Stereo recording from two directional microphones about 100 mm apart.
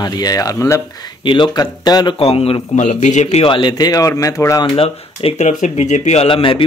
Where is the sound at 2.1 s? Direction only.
75° left (ahead or behind); by 3.7 s 60° left (ahead or behind).